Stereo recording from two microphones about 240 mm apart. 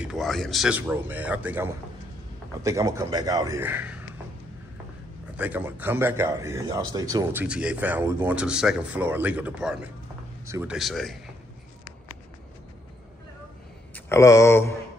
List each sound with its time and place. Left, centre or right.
0.0 s a man's voice: centre
5.4 s a man's voice: centre
13.9 s speech: centre